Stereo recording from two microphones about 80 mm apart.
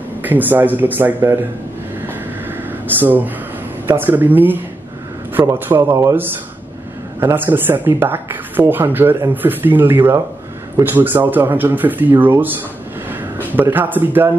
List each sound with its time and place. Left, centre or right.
0.2 s speech: right
2.0 s a sound: right
3.8 s speech: right
5.7 s speech: right